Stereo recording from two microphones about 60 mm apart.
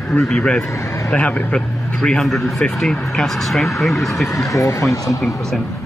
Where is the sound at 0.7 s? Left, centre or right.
Left.